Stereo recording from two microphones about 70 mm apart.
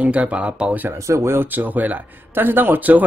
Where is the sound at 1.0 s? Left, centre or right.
Right.